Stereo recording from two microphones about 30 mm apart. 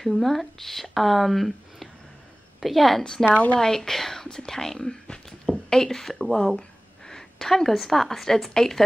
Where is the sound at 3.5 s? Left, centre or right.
Centre.